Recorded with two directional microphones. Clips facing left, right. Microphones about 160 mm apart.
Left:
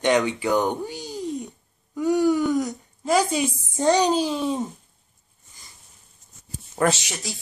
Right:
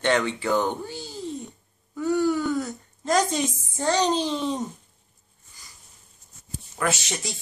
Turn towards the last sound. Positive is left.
turn(degrees=0)  # may be behind; listen again after turning